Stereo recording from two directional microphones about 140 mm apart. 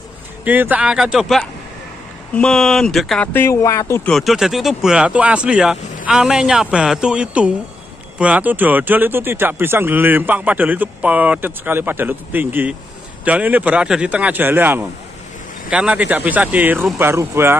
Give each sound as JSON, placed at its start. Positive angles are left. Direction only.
{"t": 0.5, "sound": "speech", "side_deg": -10}
{"t": 3.3, "sound": "speech", "side_deg": 20}
{"t": 4.0, "sound": "speech", "side_deg": 0}